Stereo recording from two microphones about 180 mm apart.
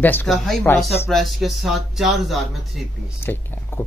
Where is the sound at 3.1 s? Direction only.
10° left (ahead or behind).